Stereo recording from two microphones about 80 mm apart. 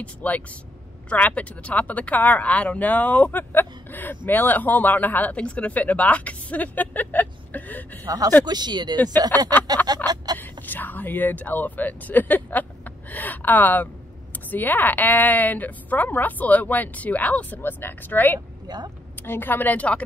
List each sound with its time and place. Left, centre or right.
0.0 s speech: centre
8.5 s speech: right
10.0 s a sound: right
10.4 s speech: left